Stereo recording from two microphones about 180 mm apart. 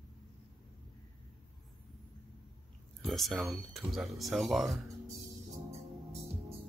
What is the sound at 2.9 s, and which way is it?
Speech, centre (ahead or behind).